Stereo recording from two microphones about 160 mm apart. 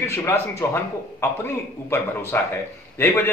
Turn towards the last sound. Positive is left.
turn(degrees=15)  # may be behind; listen again after turning